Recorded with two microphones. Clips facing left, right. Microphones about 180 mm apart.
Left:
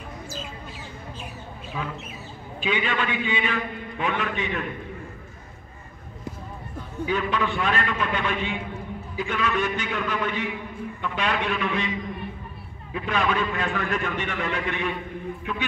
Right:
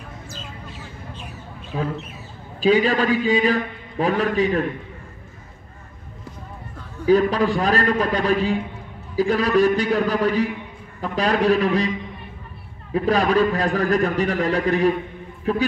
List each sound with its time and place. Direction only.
1.7 s a man's voice: 40° right (ahead or behind)
7.1 s a man's voice: 35° right (ahead or behind)
12.9 s a man's voice: 35° right (ahead or behind)